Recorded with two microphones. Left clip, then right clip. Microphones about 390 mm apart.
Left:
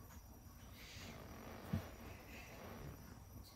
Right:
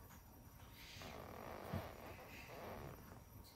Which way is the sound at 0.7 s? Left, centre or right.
Centre.